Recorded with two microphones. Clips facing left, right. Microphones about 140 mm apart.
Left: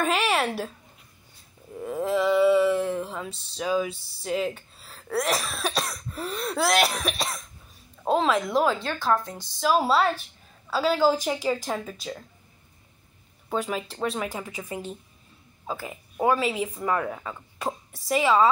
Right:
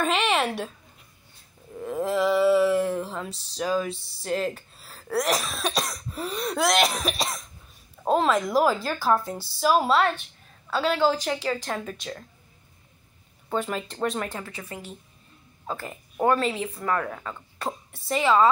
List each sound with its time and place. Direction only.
0.0 s a woman's voice: 5° left (ahead or behind)
1.8 s speech: centre (ahead or behind)
9.8 s speech: 5° left (ahead or behind)
13.5 s speech: 5° left (ahead or behind)
15.6 s speech: 5° left (ahead or behind)